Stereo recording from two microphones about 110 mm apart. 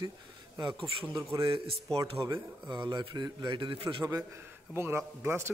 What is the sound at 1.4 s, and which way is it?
Speech, 50° right (ahead or behind).